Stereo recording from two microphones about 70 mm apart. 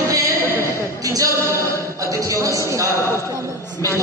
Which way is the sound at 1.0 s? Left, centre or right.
Right.